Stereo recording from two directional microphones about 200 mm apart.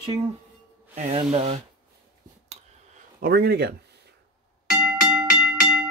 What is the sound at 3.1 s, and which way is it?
Speech, 50° right (ahead or behind).